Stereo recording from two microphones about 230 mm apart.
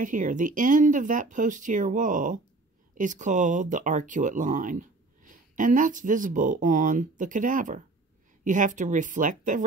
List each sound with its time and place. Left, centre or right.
0.0 s speech: right